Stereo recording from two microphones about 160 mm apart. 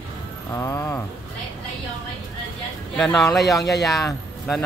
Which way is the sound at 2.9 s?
5° left (ahead or behind).